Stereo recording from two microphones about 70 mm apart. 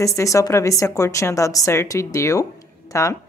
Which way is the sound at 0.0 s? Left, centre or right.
Left.